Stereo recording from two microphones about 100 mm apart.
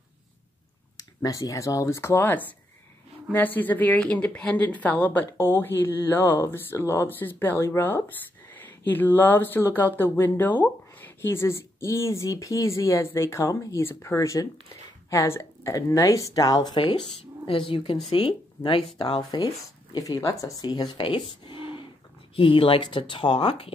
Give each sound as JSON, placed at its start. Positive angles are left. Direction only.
{"t": 0.9, "sound": "a woman's voice", "side_deg": 35}
{"t": 17.2, "sound": "speech", "side_deg": 65}
{"t": 19.9, "sound": "speech", "side_deg": 35}
{"t": 21.0, "sound": "a sound", "side_deg": 55}
{"t": 22.3, "sound": "speech", "side_deg": 65}